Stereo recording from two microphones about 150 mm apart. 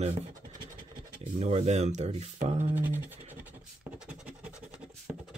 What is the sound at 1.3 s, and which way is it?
Speech, 45° right (ahead or behind).